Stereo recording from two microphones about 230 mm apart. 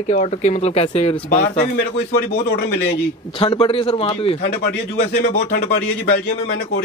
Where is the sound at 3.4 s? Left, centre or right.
Left.